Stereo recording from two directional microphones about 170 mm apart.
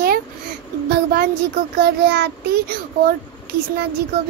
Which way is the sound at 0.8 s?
60° right (ahead or behind).